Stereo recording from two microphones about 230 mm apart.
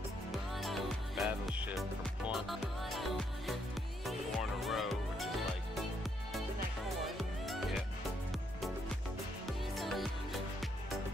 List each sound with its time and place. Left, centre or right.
0.6 s music: centre
7.2 s music: centre
9.5 s music: centre